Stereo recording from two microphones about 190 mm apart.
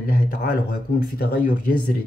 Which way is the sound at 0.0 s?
55° left (ahead or behind).